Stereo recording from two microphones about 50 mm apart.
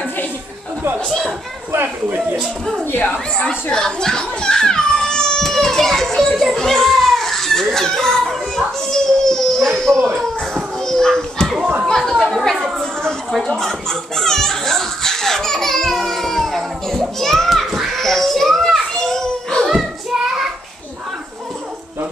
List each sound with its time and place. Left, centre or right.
2.0 s speech: right
2.9 s speech: left
3.7 s a sound: centre
5.4 s a child's voice: centre
6.3 s children playing: centre
7.7 s a child's voice: centre
10.1 s children playing: centre
12.0 s speech: centre
12.7 s children playing: centre
17.6 s a sound: centre
17.9 s children playing: centre
19.7 s child singing: centre